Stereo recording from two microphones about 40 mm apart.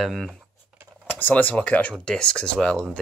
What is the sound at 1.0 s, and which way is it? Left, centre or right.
Computer keyboard, left.